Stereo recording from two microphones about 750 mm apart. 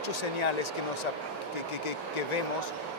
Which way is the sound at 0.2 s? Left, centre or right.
Left.